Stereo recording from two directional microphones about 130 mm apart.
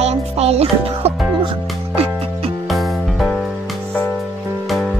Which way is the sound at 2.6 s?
Centre (ahead or behind).